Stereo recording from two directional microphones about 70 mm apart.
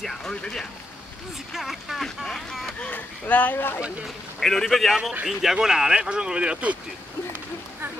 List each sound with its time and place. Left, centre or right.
0.0 s speech: centre
1.5 s a man's voice: centre
2.8 s speech: left
4.4 s a man's voice: centre